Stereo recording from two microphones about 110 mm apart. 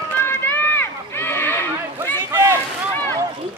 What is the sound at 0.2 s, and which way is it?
Run, 20° left (ahead or behind).